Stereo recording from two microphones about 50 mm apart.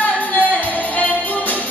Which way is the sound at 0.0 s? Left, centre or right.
Left.